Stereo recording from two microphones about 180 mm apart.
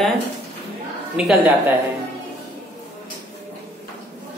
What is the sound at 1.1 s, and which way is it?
Speech, 5° right (ahead or behind).